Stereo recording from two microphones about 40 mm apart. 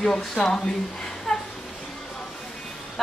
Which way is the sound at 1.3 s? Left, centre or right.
Centre.